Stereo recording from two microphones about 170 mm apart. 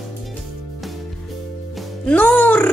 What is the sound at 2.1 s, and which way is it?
Speech, 10° left (ahead or behind).